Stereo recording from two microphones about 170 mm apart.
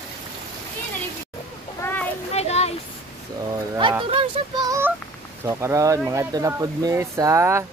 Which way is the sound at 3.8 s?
30° right (ahead or behind).